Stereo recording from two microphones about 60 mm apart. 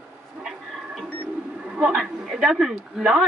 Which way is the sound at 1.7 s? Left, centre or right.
Centre.